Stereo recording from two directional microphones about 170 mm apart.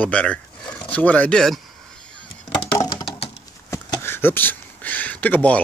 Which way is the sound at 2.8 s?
30° left (ahead or behind).